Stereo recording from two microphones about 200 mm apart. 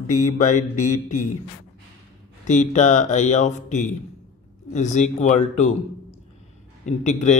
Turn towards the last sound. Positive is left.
turn(degrees=35)  # may be behind; listen again after turning